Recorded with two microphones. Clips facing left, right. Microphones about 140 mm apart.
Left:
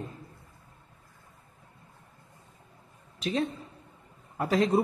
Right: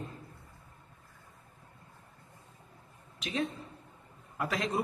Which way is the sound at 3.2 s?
30° left (ahead or behind).